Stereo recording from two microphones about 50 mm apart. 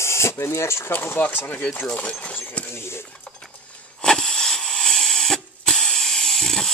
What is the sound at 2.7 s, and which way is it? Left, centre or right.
Creak, left.